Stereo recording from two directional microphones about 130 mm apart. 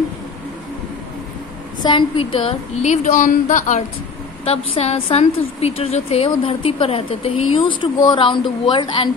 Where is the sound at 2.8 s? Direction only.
80° left.